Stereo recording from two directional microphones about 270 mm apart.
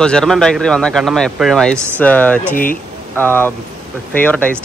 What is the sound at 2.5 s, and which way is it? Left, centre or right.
Speech, left.